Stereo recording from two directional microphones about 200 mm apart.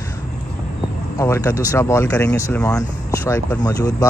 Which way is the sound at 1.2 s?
15° left (ahead or behind).